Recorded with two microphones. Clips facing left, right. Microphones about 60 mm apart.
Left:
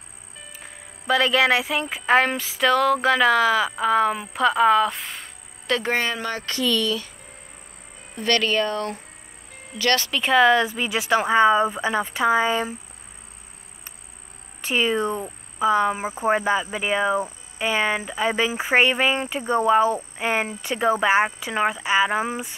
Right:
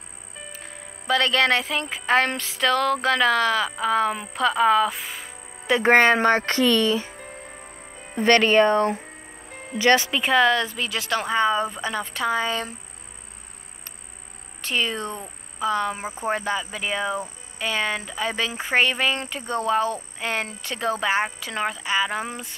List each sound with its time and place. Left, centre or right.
0.5 s speech: centre
5.8 s speech: right; by 10.2 s centre
10.2 s speech: centre
10.5 s speech: centre
14.6 s speech: centre